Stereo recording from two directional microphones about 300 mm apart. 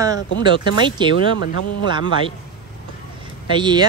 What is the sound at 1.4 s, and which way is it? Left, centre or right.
Speech, left.